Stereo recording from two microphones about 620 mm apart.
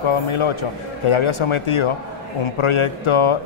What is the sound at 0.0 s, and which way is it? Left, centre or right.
A man's voice, left.